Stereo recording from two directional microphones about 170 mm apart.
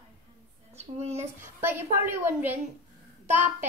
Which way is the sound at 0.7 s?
40° right (ahead or behind).